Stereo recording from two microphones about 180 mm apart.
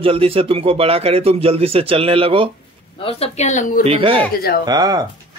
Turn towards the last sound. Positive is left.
turn(degrees=-20)  # may be behind; listen again after turning